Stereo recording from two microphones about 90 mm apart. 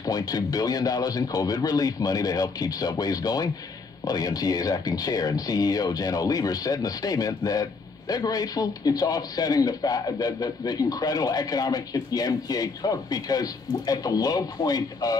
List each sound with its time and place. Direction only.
0.0 s a man's voice: 45° left (ahead or behind)